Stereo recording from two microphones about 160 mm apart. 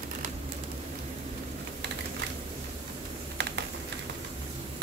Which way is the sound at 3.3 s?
90° right.